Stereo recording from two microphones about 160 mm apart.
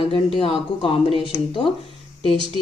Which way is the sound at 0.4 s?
35° left (ahead or behind).